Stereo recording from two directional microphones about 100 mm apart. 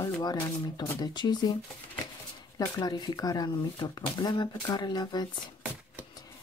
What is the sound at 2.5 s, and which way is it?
Speech, 40° left (ahead or behind).